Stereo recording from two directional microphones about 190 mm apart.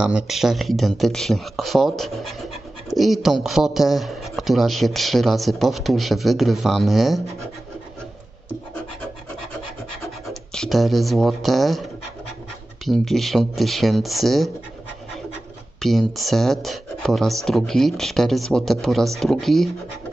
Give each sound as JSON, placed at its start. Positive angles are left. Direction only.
{"t": 0.0, "sound": "speech", "side_deg": -5}
{"t": 10.2, "sound": "speech", "side_deg": 0}
{"t": 12.8, "sound": "speech", "side_deg": 0}
{"t": 15.8, "sound": "speech", "side_deg": 0}